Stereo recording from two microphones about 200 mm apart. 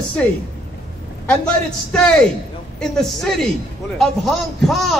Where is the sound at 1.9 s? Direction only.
5° left (ahead or behind).